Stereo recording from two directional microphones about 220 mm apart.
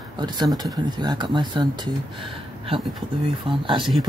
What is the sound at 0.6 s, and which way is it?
Speech, 20° right (ahead or behind).